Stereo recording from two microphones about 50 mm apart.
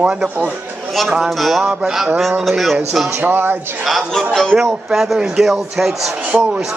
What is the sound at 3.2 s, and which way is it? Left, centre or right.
Speech, right.